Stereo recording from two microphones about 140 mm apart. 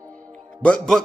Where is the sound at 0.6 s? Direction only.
5° left (ahead or behind).